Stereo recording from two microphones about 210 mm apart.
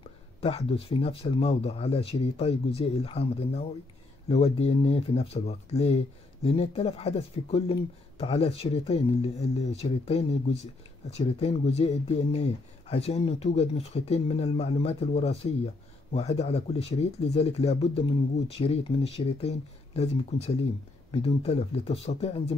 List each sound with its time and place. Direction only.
0.4 s speech: 30° left (ahead or behind)